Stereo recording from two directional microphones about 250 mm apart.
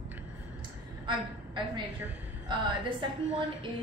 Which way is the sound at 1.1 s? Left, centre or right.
Centre.